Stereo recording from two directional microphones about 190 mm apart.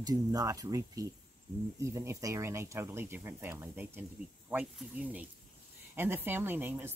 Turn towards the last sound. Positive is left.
turn(degrees=-10)  # may be behind; listen again after turning